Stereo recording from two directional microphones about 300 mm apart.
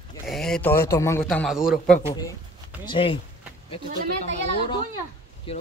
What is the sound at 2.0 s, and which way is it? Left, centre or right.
A man's voice, centre.